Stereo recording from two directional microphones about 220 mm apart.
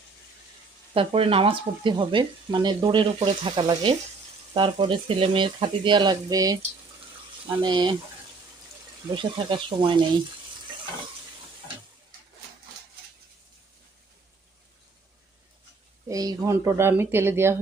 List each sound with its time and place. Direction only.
0.9 s speech: 25° right (ahead or behind)
7.6 s speech: 20° right (ahead or behind)
9.1 s speech: 25° right (ahead or behind)
16.1 s speech: 15° right (ahead or behind)